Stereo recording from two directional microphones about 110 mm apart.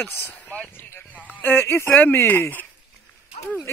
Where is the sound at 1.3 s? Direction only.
20° left (ahead or behind).